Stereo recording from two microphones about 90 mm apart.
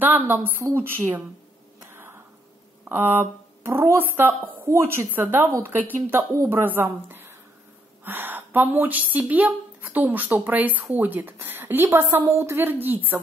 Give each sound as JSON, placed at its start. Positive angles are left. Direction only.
{"t": 0.0, "sound": "speech", "side_deg": -20}
{"t": 2.9, "sound": "a woman's voice", "side_deg": -20}